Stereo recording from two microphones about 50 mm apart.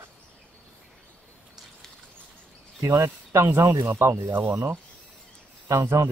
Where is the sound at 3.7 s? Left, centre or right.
Right.